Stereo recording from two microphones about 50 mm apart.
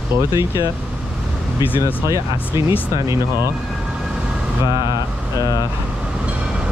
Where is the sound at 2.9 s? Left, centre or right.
Right.